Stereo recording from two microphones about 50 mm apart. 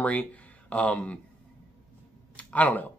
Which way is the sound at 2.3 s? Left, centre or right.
Left.